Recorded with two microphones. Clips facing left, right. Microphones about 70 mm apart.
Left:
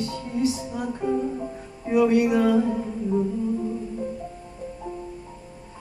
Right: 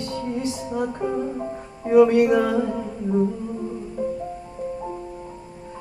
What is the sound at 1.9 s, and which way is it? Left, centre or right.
Music, right.